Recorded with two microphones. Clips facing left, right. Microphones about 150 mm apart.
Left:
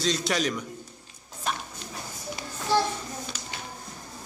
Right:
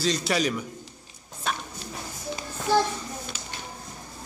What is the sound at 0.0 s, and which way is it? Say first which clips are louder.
Speech: right 1 dB; 5° right (ahead or behind).